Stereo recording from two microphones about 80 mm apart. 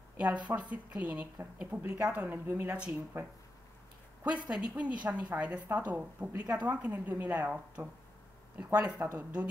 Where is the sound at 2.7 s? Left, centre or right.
Centre.